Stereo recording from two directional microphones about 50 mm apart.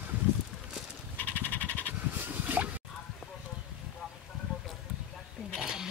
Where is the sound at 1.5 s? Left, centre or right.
Left.